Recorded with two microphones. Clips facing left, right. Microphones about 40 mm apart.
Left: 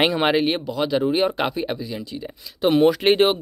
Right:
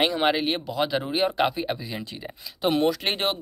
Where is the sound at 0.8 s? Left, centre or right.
Centre.